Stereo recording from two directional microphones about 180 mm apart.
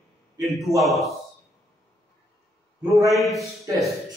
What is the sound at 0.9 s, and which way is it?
Mantra, centre (ahead or behind).